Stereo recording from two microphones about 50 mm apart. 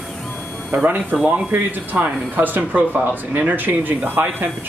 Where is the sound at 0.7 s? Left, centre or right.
Right.